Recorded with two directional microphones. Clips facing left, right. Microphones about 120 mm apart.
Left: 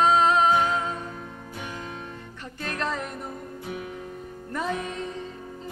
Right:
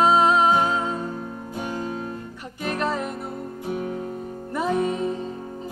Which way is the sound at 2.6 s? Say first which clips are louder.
Right 5 dB; 15° right (ahead or behind).